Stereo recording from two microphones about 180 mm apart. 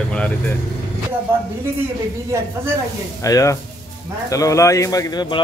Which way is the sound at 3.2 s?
20° left (ahead or behind).